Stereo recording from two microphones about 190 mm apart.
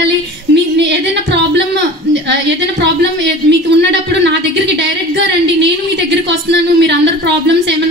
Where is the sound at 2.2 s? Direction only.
65° right (ahead or behind).